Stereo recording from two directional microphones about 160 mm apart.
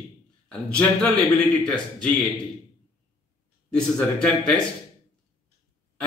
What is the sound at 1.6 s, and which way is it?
Speech, 5° left (ahead or behind).